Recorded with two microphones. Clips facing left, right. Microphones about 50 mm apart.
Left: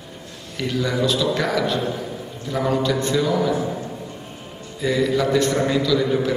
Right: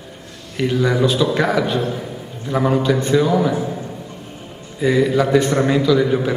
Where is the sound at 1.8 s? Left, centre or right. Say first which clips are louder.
Right 2 dB; centre.